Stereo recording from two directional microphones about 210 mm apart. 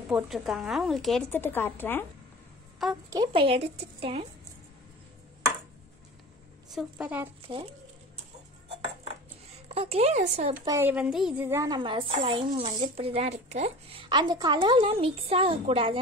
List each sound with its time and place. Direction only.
0.1 s speech: centre (ahead or behind)
3.1 s a woman's voice: 20° right (ahead or behind)
6.7 s speech: 5° right (ahead or behind)
9.7 s speech: 30° right (ahead or behind)
10.6 s a woman's voice: 15° right (ahead or behind)